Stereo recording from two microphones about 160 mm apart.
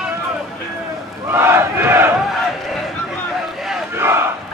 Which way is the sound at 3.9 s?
15° right (ahead or behind).